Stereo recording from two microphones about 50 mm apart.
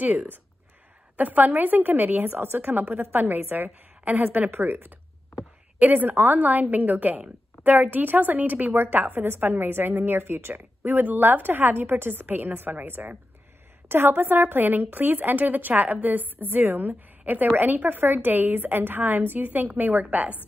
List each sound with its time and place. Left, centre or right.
0.0 s a woman's voice: right